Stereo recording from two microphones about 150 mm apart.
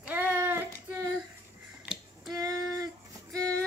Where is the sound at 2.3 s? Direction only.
25° right (ahead or behind).